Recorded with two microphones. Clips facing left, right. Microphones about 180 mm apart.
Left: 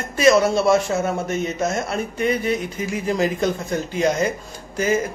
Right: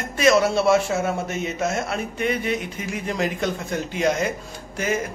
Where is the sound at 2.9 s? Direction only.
Centre (ahead or behind).